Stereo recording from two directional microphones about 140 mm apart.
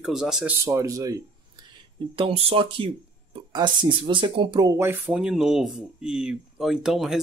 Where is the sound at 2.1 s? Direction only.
40° right (ahead or behind).